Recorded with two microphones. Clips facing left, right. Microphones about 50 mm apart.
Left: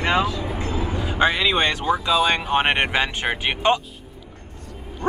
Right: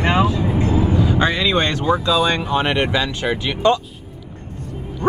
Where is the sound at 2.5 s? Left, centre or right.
Left.